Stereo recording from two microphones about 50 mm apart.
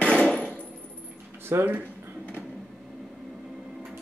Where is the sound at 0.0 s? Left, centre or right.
Centre.